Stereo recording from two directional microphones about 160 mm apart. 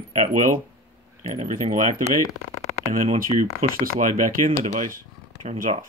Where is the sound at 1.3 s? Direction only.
45° right (ahead or behind).